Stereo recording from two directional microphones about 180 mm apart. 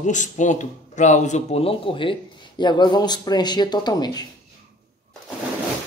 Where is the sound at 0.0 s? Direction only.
45° left (ahead or behind); by 4.3 s 20° left (ahead or behind).